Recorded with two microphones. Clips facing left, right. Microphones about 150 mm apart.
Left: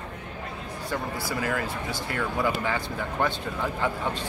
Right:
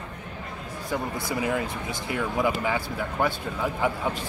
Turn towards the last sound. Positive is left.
turn(degrees=-10)  # may be behind; listen again after turning